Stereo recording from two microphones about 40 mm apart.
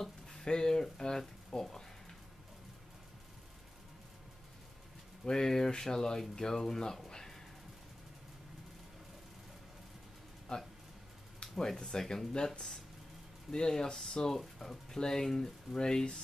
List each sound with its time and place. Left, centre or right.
0.0 s speech: centre
5.2 s speech: centre
11.4 s speech: centre
13.5 s speech: centre